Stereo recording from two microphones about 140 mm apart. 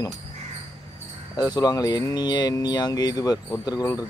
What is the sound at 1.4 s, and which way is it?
Speech, 30° left (ahead or behind).